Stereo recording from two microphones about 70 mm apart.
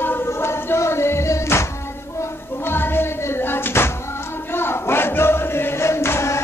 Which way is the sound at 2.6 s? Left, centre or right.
Left.